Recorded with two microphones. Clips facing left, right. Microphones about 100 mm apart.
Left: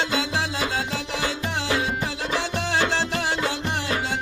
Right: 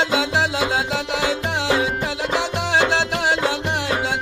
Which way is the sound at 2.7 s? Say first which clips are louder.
Right 5 dB; 90° right.